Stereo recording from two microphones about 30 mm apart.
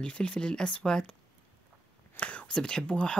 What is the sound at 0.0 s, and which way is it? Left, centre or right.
Speech, left.